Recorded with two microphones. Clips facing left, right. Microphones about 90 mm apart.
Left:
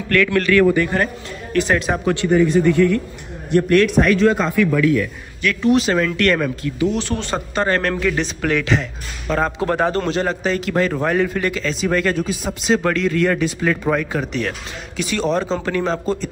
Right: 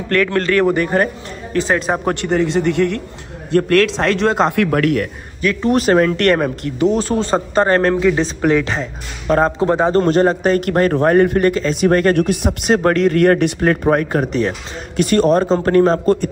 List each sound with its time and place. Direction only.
0.1 s speech: 35° right (ahead or behind)
2.2 s a man's voice: 80° right
3.6 s a man's voice: 90° right; by 5.0 s 65° right (ahead or behind)
5.4 s a man's voice: 35° right (ahead or behind)
7.9 s speech: 20° right (ahead or behind)
9.9 s a man's voice: 40° right (ahead or behind)